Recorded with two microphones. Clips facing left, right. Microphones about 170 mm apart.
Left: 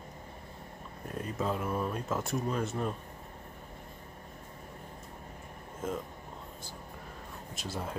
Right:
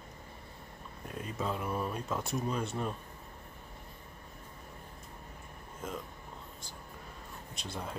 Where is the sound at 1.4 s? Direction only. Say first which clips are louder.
Left 2 dB; 5° left (ahead or behind).